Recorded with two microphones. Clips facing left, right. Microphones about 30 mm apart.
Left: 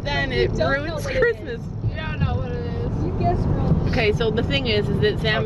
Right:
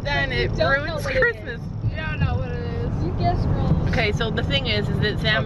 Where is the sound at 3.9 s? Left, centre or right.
Centre.